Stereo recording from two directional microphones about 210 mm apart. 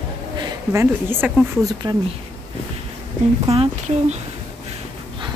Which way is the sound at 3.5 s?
30° right (ahead or behind).